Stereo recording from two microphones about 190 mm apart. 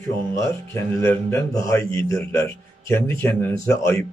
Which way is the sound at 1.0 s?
10° left (ahead or behind).